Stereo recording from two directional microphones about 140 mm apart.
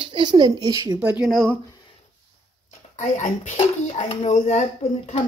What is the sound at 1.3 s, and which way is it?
Speech, centre (ahead or behind).